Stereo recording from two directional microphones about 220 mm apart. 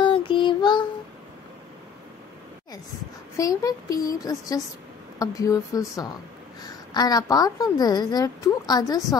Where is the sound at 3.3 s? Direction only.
15° left (ahead or behind).